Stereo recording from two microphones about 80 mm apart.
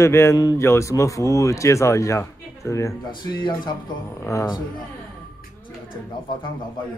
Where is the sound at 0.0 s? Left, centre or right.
Left.